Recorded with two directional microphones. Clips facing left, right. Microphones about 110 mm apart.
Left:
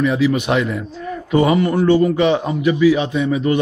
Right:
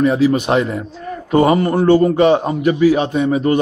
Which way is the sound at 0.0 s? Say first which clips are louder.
Right 3 dB; 40° right (ahead or behind).